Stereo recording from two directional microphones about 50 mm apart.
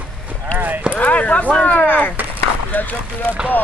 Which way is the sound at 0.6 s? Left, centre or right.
Right.